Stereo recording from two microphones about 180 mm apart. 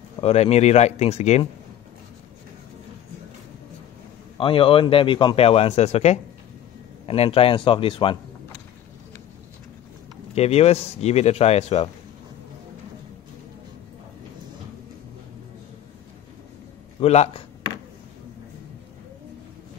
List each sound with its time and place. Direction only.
0.2 s speech: 35° left (ahead or behind)
4.4 s speech: 30° left (ahead or behind)
10.3 s speech: 35° left (ahead or behind)
17.0 s speech: 35° left (ahead or behind)